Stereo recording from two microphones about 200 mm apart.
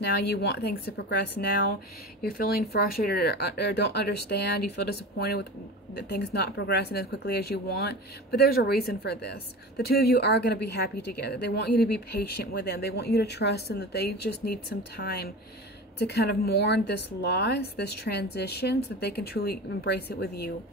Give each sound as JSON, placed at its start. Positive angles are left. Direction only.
{"t": 0.3, "sound": "a woman's voice", "side_deg": 55}